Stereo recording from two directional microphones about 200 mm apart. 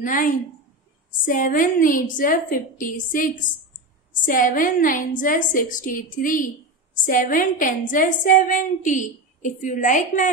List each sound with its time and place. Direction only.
0.0 s a woman's voice: 40° left (ahead or behind)